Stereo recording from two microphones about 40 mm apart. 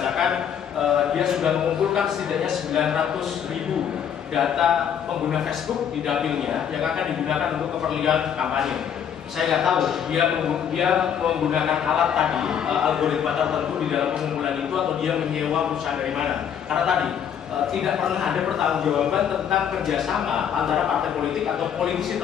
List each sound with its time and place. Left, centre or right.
0.8 s a sound: centre
2.7 s a man's voice: centre
4.4 s a man's voice: centre
6.0 s a man's voice: centre
16.7 s a man's voice: centre